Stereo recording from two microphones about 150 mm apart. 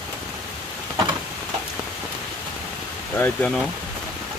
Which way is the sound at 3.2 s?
15° left (ahead or behind).